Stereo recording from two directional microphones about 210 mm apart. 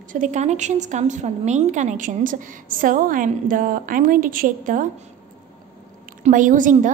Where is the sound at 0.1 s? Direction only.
35° right (ahead or behind).